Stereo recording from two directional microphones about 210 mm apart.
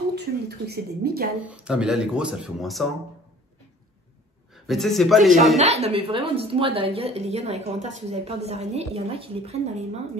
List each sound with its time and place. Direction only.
0.1 s speech: 50° right (ahead or behind)
1.4 s speech: 5° right (ahead or behind)
4.6 s speech: centre (ahead or behind)
5.6 s a woman's voice: 30° right (ahead or behind)